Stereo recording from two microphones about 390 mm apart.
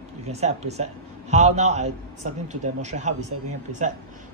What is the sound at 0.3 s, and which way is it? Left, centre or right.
Speech, centre.